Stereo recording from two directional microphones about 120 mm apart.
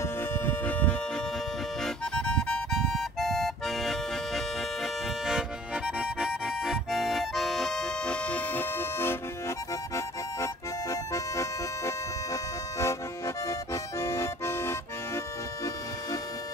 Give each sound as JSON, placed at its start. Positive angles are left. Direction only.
{"t": 0.0, "sound": "music", "side_deg": 20}
{"t": 1.8, "sound": "accordion", "side_deg": 5}
{"t": 5.9, "sound": "accordion", "side_deg": -5}
{"t": 9.9, "sound": "music", "side_deg": 25}
{"t": 13.5, "sound": "accordion", "side_deg": 25}